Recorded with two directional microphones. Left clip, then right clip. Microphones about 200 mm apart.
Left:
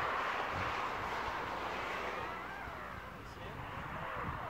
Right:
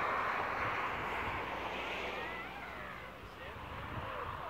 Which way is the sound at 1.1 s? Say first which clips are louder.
Even; 15° left (ahead or behind).